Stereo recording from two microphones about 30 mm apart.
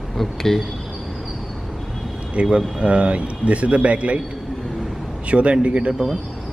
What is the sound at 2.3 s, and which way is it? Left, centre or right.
Speech, right.